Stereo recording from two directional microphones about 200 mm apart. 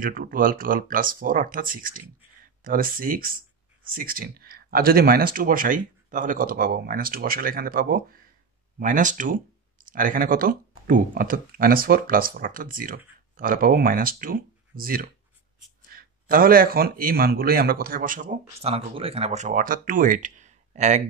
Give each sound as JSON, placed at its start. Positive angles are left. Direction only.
{"t": 0.0, "sound": "speech", "side_deg": -45}